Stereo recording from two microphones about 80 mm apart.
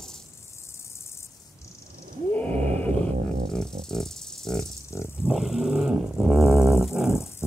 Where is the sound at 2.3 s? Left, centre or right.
Centre.